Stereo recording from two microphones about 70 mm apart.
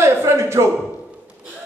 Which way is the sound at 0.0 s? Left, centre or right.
Right.